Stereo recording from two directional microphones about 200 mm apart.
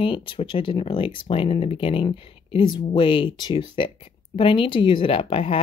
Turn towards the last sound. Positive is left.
turn(degrees=25)  # may be behind; listen again after turning